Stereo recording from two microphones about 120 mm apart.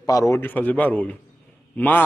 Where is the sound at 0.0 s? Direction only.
25° left (ahead or behind).